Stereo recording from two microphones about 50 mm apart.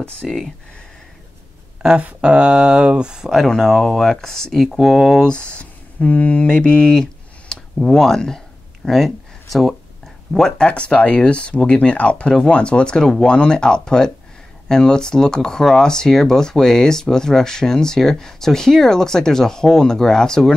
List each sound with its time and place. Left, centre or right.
0.2 s speech: centre
2.0 s speech: right
3.3 s speech: centre
5.2 s speech: centre
10.3 s speech: centre
10.7 s speech: left